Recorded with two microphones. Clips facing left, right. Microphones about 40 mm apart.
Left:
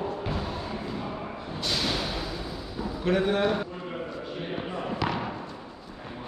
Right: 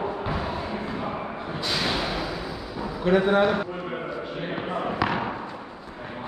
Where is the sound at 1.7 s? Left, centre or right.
Right.